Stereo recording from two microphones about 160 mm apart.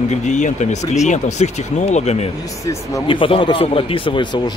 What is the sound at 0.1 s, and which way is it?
Speech, 50° left (ahead or behind).